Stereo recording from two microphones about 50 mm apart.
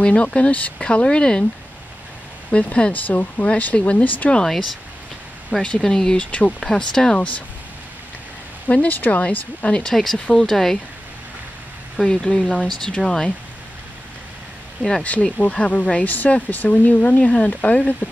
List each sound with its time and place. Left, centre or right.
0.0 s speech: left
2.5 s speech: left
4.5 s speech: centre
5.9 s speech: centre
6.1 s speech: left
6.6 s speech: centre
8.6 s speech: left
9.2 s speech: left
9.8 s speech: centre
12.0 s speech: centre
14.8 s speech: centre
15.0 s speech: left